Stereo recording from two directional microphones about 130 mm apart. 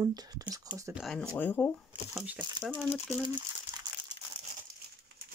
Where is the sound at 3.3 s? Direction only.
40° right (ahead or behind).